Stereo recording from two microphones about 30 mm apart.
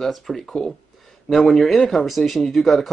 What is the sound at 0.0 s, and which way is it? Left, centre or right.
Speech, centre.